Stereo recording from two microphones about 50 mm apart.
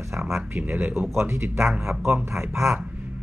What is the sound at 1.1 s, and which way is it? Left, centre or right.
Speech, right.